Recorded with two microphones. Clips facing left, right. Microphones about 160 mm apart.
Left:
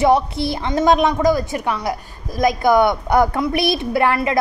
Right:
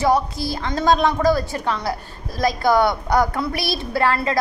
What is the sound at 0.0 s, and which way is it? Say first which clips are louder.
A woman's voice: left 3 dB; 25° left (ahead or behind).